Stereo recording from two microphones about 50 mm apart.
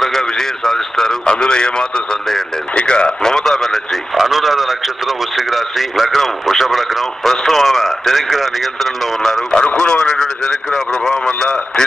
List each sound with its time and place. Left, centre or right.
0.0 s radio: centre
1.3 s a man's voice: centre
2.7 s radio: centre
9.8 s radio: centre
11.1 s a sound: centre